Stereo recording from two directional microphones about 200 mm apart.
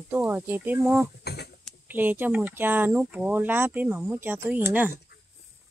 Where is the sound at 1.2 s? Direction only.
55° left (ahead or behind).